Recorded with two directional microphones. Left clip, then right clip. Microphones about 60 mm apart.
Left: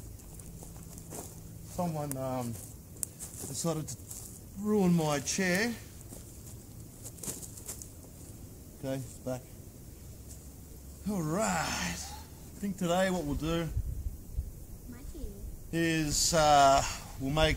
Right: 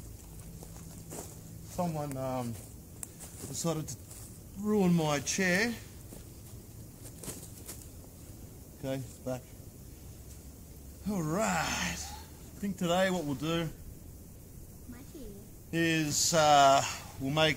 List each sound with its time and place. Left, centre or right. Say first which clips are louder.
1.8 s speech: even; centre
7.2 s a sound: left 2 dB; left
8.8 s speech: even; centre
11.1 s speech: even; centre
15.7 s speech: right 1 dB; centre